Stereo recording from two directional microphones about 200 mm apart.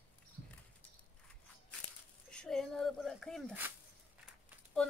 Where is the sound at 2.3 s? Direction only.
5° left (ahead or behind).